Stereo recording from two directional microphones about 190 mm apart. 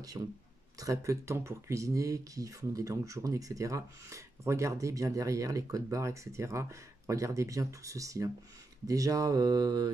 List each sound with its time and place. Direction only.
0.2 s speech: 15° right (ahead or behind)
8.8 s mantra: 20° right (ahead or behind)